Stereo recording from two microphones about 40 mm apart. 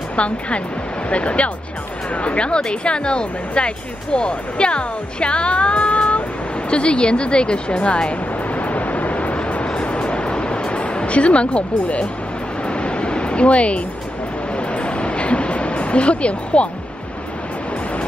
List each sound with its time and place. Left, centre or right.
0.1 s speech: left
8.5 s vehicle: left
9.8 s music: left
12.6 s a sound: left